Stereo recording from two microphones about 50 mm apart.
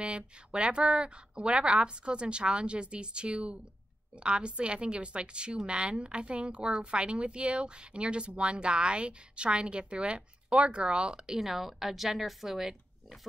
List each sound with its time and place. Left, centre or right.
0.0 s a woman's voice: right; by 13.3 s centre